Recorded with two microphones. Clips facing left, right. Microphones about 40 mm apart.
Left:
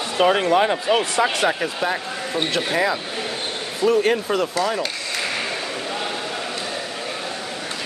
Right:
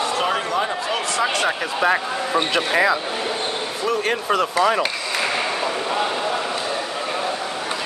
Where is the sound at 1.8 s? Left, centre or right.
Right.